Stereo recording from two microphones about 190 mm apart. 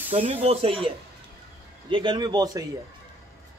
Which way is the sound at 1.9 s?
25° right (ahead or behind).